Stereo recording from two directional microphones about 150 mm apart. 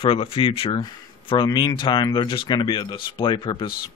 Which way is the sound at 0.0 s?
35° left (ahead or behind).